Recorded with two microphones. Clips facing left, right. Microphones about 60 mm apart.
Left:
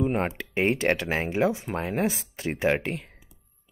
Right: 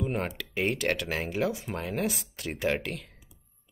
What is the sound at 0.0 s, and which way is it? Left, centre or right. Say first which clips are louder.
Speech: left 5 dB; left.